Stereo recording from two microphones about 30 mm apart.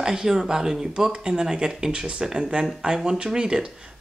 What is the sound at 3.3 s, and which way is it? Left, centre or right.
Speech, right.